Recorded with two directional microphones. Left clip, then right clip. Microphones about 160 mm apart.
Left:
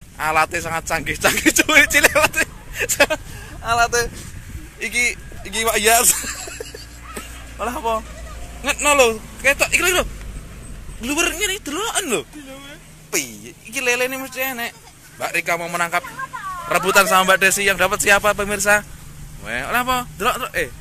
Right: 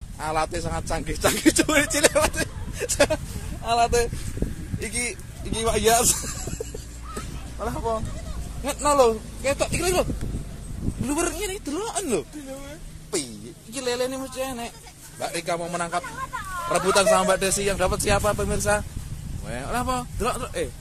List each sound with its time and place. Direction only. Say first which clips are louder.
0.2 s speech: left 8 dB; centre (ahead or behind)
3.6 s speech: left 3 dB; 25° right (ahead or behind)
4.7 s speech: left 10 dB; 10° right (ahead or behind)
5.6 s speech: left 5 dB; centre (ahead or behind)
7.5 s speech: left 6 dB; 15° left (ahead or behind)
8.9 s speech: left 2 dB; centre (ahead or behind)
11.1 s speech: left 6 dB; 10° left (ahead or behind)
11.3 s speech: left 6 dB; 5° right (ahead or behind)
13.7 s speech: left 7 dB; centre (ahead or behind)